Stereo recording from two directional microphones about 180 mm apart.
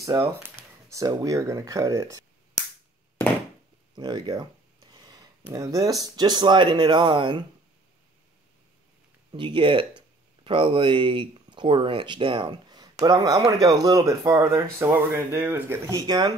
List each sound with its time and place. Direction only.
0.4 s speech: 15° right (ahead or behind)
3.9 s speech: 25° right (ahead or behind)
9.3 s speech: 25° right (ahead or behind)